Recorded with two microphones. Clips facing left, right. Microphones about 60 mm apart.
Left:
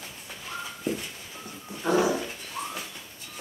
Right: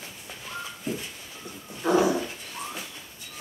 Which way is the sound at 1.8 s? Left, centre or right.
Centre.